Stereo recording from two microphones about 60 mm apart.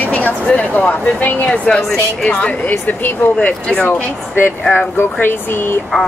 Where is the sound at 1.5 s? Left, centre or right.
Centre; by 3.3 s left.